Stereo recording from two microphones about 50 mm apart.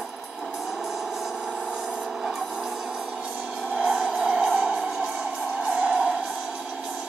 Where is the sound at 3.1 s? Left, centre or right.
Right.